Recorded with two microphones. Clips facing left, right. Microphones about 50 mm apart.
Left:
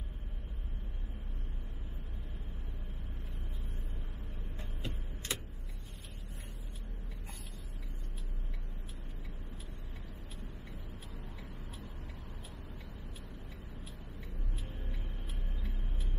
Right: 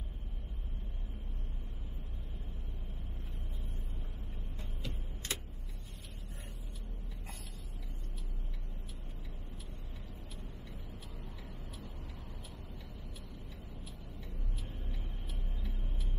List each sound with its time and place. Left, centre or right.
4.6 s vehicle: left